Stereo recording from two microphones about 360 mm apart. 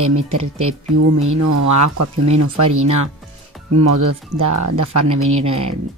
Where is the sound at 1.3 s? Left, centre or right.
Right.